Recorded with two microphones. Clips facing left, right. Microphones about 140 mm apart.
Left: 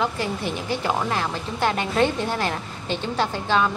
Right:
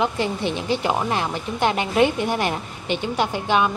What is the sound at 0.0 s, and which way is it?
Speech, 20° right (ahead or behind).